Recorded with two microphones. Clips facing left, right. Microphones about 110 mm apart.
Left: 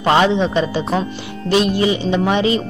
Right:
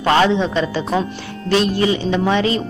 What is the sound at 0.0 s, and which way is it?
Speech, 15° left (ahead or behind).